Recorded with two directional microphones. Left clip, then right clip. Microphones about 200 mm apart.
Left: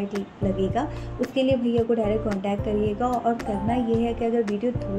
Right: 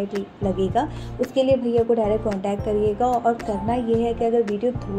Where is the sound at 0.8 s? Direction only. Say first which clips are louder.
Right 4 dB; 20° right (ahead or behind).